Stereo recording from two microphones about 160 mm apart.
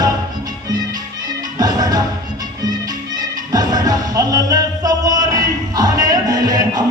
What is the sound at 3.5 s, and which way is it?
Music, 25° right (ahead or behind).